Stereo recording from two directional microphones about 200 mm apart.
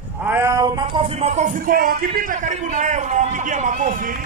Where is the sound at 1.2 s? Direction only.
35° right (ahead or behind).